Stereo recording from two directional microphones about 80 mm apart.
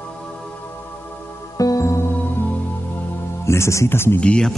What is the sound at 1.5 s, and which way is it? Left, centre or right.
Music, left.